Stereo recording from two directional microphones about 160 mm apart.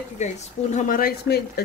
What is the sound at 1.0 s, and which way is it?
Speech, 85° left.